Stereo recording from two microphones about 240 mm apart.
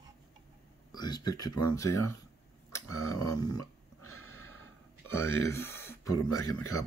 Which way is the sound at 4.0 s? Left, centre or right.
Left.